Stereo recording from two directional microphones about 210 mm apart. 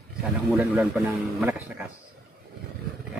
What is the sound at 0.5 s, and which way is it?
A man's voice, 5° right (ahead or behind).